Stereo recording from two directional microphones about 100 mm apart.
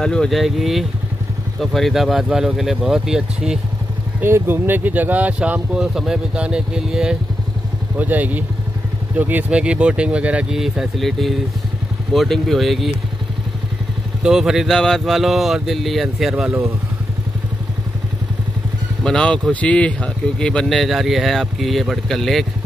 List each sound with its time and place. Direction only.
0.0 s speech: 5° left (ahead or behind)
4.2 s speech: 20° right (ahead or behind); by 12.9 s centre (ahead or behind)
14.2 s speech: 5° right (ahead or behind)
19.0 s speech: 5° left (ahead or behind)